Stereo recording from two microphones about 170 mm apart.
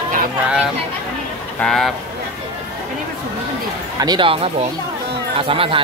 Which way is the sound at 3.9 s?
25° right (ahead or behind).